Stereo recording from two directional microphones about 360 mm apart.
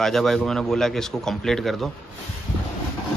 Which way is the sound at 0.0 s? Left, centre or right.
Centre.